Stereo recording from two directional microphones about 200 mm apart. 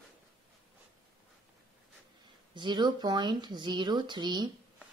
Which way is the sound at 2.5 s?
20° right (ahead or behind).